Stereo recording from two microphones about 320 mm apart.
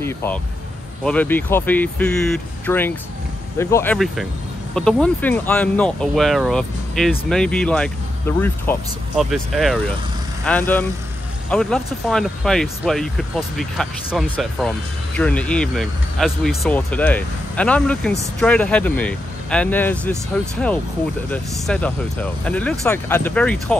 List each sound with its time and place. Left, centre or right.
0.0 s speech: centre
21.3 s speech: centre